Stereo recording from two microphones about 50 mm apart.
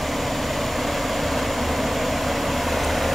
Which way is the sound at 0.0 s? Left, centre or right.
Centre.